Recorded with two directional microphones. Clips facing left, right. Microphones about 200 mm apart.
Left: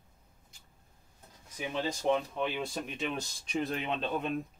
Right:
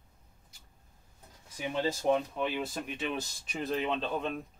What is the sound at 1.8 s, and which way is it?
Speech, 5° right (ahead or behind).